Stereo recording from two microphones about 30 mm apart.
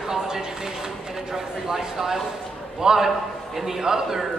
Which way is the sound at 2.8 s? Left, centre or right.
Centre.